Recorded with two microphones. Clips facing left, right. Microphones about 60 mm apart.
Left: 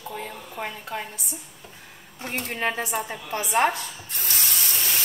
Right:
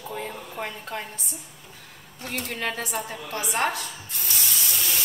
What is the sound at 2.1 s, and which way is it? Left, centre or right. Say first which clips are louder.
A woman's voice: left 2 dB; left.